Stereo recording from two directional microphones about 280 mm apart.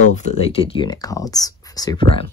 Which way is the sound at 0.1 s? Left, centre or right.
Left.